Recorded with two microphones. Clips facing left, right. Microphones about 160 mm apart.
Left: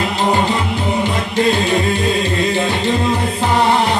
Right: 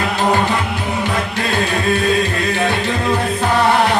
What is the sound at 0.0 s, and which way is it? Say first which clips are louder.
Music: even; 20° left (ahead or behind).